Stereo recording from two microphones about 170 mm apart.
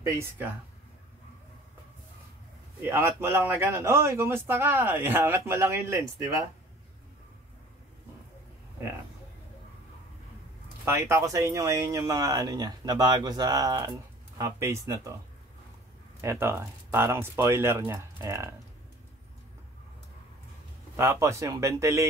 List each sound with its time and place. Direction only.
0.0 s a man's voice: 15° right (ahead or behind)
2.8 s a man's voice: 15° right (ahead or behind)
10.9 s a man's voice: 15° right (ahead or behind)
16.2 s a man's voice: 15° right (ahead or behind)
20.9 s a man's voice: 15° right (ahead or behind)